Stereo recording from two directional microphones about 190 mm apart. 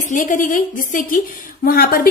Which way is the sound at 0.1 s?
45° left (ahead or behind).